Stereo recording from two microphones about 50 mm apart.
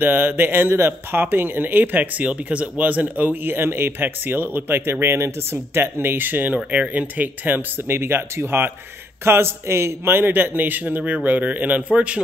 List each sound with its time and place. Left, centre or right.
0.0 s speech: right
5.0 s speech: right
9.2 s a man's voice: right
11.9 s a man's voice: right